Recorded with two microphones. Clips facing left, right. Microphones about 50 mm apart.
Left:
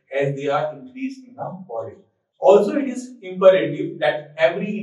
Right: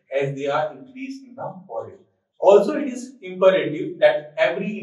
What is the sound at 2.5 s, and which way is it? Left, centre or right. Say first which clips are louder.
A man's voice: left 1 dB; left.